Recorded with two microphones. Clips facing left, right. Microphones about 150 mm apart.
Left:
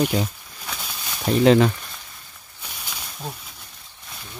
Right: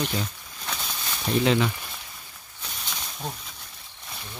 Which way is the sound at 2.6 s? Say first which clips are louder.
Even; 5° left (ahead or behind).